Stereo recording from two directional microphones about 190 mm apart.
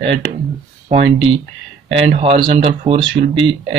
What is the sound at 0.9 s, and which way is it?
Speech, 30° right (ahead or behind).